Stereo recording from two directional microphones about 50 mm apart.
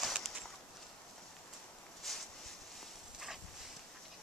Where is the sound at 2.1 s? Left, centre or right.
Centre.